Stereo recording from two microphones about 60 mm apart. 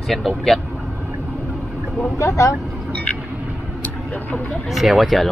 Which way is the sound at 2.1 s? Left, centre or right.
Left.